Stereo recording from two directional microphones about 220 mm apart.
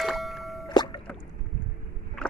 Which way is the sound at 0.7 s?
20° left (ahead or behind).